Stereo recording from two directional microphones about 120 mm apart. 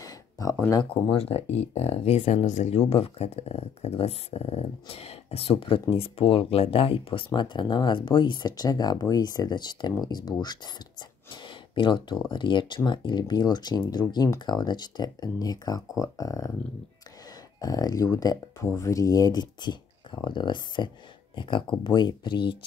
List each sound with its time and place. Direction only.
0.0 s a sound: 30° left (ahead or behind)
0.6 s speech: 25° left (ahead or behind)
1.1 s speech: 55° left (ahead or behind); by 16.5 s 30° left (ahead or behind)
17.6 s speech: 30° left (ahead or behind)